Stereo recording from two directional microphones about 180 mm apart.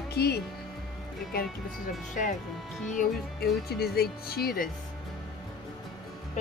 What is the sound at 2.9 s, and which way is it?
Speech, 50° left (ahead or behind).